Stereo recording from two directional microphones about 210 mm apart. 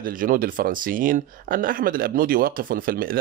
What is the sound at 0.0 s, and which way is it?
Speech, 40° right (ahead or behind).